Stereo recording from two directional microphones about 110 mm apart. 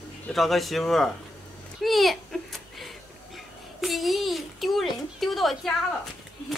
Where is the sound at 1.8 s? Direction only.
Centre (ahead or behind).